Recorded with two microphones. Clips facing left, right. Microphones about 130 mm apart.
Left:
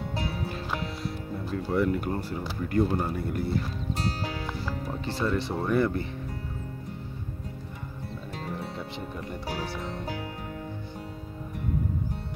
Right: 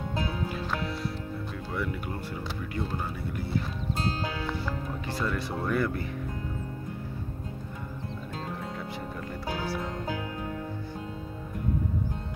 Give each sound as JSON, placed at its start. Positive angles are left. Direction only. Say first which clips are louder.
{"t": 1.5, "sound": "speech", "louder": "left 10 dB", "side_deg": 40}
{"t": 5.0, "sound": "speech", "louder": "left 4 dB", "side_deg": 30}